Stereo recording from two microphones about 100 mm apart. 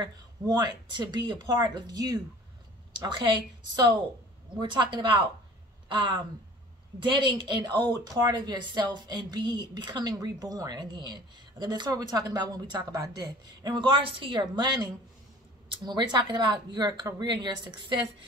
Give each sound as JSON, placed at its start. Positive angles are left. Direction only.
{"t": 0.0, "sound": "a woman's voice", "side_deg": -45}
{"t": 7.0, "sound": "a woman's voice", "side_deg": -55}
{"t": 13.9, "sound": "a woman's voice", "side_deg": -55}